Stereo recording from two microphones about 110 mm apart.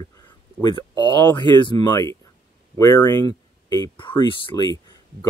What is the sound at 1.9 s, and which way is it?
Speech, 30° left (ahead or behind).